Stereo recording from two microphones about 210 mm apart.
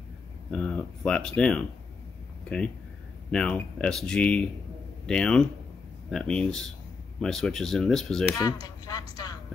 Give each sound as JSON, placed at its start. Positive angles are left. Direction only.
{"t": 0.5, "sound": "speech", "side_deg": 5}
{"t": 3.3, "sound": "speech", "side_deg": 5}
{"t": 8.6, "sound": "speech", "side_deg": 20}
{"t": 9.1, "sound": "vehicle", "side_deg": 20}